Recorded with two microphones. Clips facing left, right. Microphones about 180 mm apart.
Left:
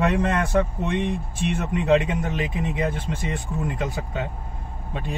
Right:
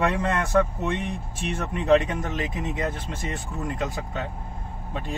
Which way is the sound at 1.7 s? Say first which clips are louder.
Even; 15° left (ahead or behind).